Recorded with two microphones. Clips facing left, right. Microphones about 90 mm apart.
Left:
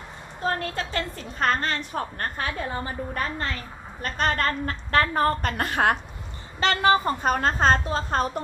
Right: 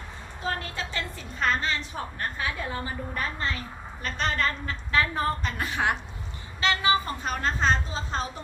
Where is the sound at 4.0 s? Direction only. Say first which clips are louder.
Left 3 dB; 50° left (ahead or behind).